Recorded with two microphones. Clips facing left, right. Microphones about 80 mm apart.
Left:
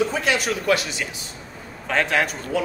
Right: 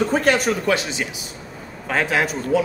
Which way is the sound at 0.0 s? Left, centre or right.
Right.